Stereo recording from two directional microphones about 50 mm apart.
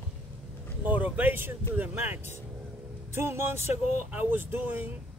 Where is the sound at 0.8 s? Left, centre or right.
Right.